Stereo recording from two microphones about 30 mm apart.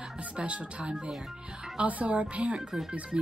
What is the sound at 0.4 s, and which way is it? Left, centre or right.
Speech, right.